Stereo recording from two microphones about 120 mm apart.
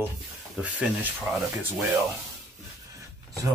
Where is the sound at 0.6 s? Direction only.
5° right (ahead or behind).